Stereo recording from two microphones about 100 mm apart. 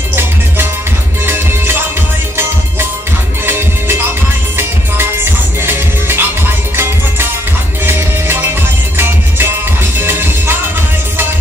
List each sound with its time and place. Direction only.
1.2 s music: 25° right (ahead or behind)
3.4 s music: 25° right (ahead or behind)
5.6 s music: 25° right (ahead or behind)
8.9 s music: 20° right (ahead or behind)